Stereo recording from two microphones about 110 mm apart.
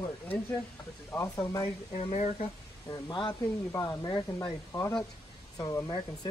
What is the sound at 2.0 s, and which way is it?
Speech, 80° left.